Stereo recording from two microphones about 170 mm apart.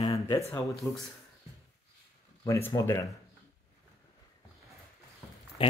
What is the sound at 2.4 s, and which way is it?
Speech, 15° left (ahead or behind).